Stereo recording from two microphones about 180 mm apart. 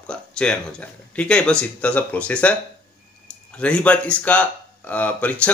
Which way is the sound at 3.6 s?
5° left (ahead or behind).